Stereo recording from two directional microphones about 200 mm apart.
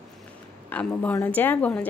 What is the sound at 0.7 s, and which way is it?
Speech, 10° left (ahead or behind).